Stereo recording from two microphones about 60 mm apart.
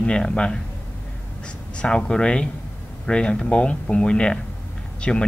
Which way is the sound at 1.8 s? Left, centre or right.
Centre.